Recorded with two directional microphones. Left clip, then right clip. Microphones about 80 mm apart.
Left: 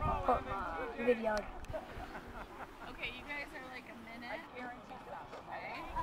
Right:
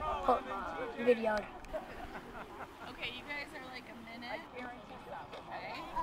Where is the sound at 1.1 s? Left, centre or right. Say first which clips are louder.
Right 3 dB; right.